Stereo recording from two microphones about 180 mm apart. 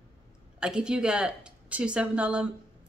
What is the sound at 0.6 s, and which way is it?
Speech, 5° right (ahead or behind).